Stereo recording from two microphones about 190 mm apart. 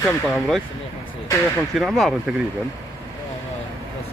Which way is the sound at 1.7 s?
Centre (ahead or behind).